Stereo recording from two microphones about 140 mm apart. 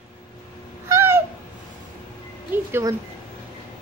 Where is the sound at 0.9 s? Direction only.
15° right (ahead or behind).